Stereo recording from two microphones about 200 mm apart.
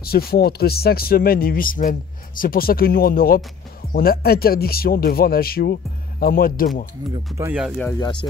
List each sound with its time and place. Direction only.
0.0 s speech: 50° left (ahead or behind)
7.3 s speech: 10° right (ahead or behind)
8.0 s speech: 20° left (ahead or behind)